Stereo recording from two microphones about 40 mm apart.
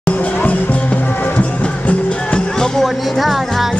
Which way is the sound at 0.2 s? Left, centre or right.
Left.